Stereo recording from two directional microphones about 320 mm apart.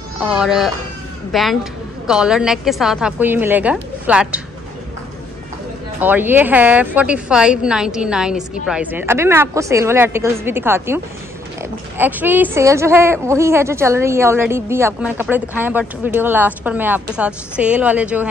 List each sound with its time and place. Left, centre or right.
0.2 s a woman's voice: centre
5.9 s a woman's voice: centre
12.0 s a woman's voice: centre